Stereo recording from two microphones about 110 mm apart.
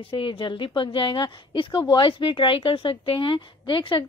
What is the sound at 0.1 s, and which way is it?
A woman's voice, 50° left (ahead or behind).